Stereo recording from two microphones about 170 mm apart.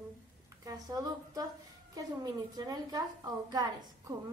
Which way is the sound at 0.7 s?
20° right (ahead or behind).